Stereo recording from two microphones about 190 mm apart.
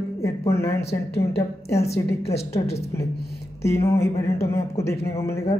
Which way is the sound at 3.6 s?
15° left (ahead or behind).